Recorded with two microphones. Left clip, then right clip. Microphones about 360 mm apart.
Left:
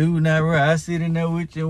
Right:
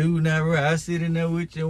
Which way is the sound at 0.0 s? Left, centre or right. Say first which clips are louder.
Left 4 dB; centre.